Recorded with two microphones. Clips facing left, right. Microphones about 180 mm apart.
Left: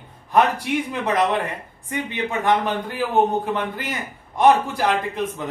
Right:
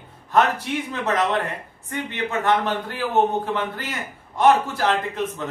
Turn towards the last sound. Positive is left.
turn(degrees=15)  # may be behind; listen again after turning